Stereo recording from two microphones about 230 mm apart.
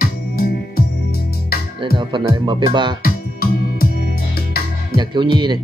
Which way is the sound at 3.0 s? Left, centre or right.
Left.